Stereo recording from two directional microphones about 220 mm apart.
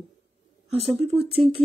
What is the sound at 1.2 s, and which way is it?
Speech, 25° right (ahead or behind).